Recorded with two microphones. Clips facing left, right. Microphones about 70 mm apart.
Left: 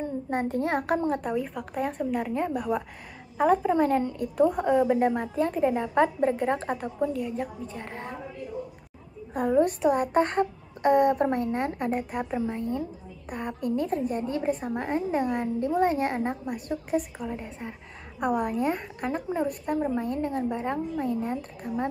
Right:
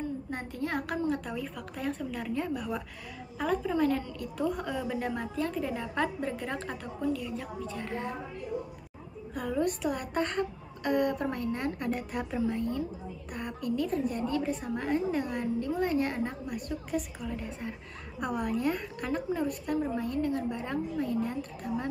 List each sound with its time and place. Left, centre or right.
0.3 s a woman's voice: left
1.3 s a woman's voice: left
9.3 s a woman's voice: left